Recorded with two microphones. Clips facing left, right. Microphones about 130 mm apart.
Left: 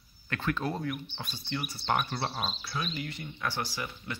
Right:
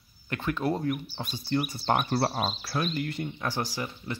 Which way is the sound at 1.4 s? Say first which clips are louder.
Right 8 dB; 45° right (ahead or behind).